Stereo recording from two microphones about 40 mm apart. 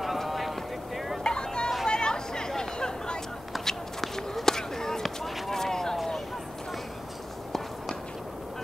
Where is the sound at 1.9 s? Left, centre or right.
Centre.